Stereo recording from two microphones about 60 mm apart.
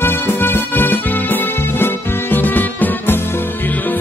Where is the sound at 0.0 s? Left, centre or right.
Left.